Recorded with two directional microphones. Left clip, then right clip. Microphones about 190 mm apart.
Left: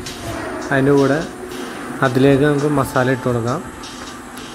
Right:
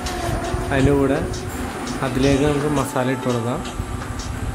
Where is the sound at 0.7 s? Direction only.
20° left (ahead or behind).